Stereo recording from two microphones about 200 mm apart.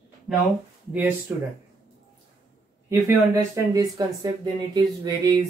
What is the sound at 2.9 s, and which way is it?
Speech, 15° right (ahead or behind).